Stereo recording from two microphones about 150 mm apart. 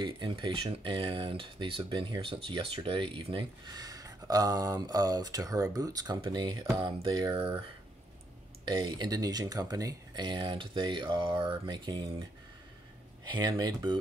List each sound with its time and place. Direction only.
0.0 s speech: 30° right (ahead or behind)
8.6 s speech: 30° right (ahead or behind)